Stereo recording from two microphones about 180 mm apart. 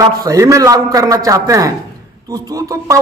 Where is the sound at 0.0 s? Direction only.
20° right (ahead or behind).